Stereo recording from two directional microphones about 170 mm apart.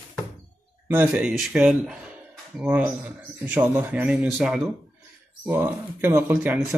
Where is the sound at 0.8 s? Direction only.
10° right (ahead or behind).